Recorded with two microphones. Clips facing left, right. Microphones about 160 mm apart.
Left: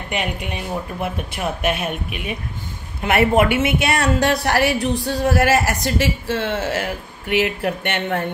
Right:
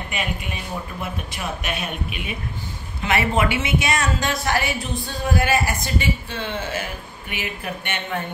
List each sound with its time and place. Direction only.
0.1 s a woman's voice: 70° left (ahead or behind)
1.0 s a woman's voice: 60° left (ahead or behind); by 8.3 s 75° left (ahead or behind)